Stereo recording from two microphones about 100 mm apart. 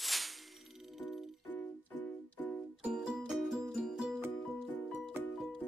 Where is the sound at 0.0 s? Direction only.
Centre (ahead or behind).